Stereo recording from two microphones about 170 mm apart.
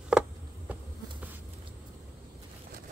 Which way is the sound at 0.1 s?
5° right (ahead or behind).